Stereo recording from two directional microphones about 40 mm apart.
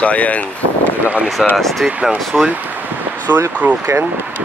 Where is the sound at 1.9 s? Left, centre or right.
Right.